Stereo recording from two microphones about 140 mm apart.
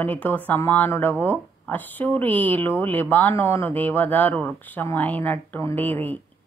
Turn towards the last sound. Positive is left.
turn(degrees=15)  # may be behind; listen again after turning